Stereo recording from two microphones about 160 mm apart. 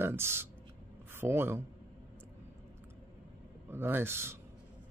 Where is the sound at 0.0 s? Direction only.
15° right (ahead or behind).